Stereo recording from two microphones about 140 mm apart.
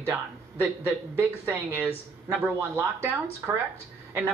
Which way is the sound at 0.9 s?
15° right (ahead or behind).